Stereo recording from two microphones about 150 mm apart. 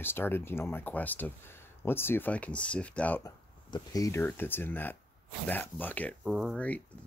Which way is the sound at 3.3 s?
25° left (ahead or behind).